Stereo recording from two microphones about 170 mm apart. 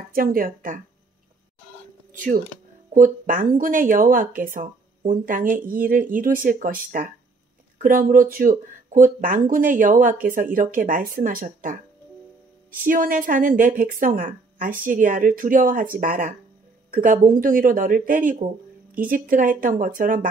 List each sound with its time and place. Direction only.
0.1 s speech: 55° right (ahead or behind)
2.1 s speech: 55° right (ahead or behind)
12.8 s speech: 55° right (ahead or behind)